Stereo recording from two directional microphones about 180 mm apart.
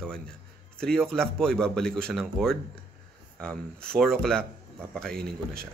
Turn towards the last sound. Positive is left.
turn(degrees=-55)  # may be behind; listen again after turning